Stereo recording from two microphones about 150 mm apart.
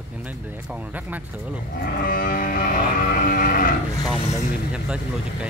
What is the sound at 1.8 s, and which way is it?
Music, 75° left (ahead or behind).